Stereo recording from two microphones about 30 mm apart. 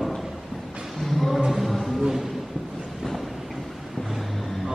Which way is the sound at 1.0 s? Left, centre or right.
Centre.